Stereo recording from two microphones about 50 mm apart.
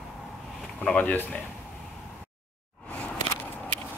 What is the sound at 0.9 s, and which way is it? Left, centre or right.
Speech, left.